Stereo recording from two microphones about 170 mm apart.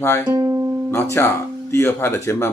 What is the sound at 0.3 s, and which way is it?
Music, 20° right (ahead or behind).